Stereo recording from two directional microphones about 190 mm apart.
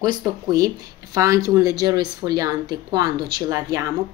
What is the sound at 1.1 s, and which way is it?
Speech, 15° right (ahead or behind).